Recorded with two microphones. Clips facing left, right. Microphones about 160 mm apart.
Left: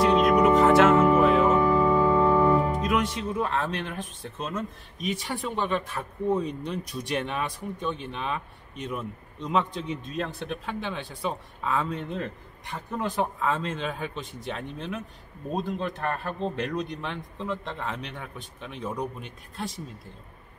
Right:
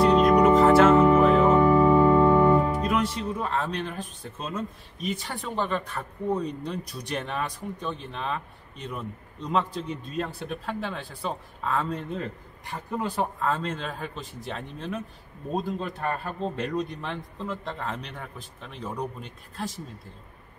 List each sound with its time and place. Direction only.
0.0 s music: 5° left (ahead or behind)
1.7 s organ: 20° right (ahead or behind)
2.5 s speech: 5° right (ahead or behind)
9.5 s speech: centre (ahead or behind)